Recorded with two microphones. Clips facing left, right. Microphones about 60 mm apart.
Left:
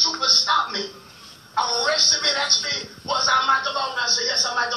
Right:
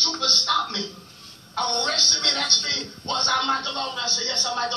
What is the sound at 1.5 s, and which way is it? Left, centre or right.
Speech, left.